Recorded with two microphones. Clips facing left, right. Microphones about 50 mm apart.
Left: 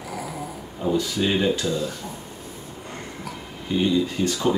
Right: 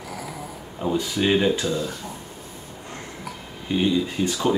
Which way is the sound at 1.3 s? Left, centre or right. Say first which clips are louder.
Right 3 dB; centre.